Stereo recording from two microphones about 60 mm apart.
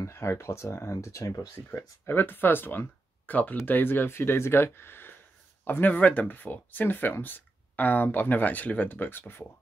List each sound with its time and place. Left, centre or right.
0.0 s speech: left
0.9 s speech: left
1.7 s speech: left